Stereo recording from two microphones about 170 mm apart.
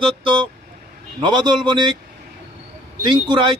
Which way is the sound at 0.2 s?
30° right (ahead or behind).